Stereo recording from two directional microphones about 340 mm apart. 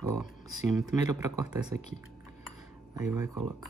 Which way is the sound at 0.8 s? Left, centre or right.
Centre.